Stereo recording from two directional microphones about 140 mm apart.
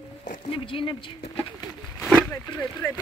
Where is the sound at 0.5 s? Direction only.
40° left (ahead or behind).